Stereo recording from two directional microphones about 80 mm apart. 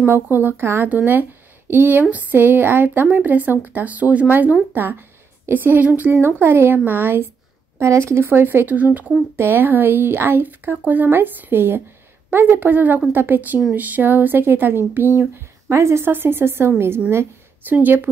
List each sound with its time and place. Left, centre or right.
0.0 s a woman's voice: right